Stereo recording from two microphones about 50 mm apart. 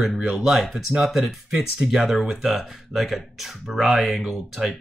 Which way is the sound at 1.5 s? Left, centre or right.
Centre.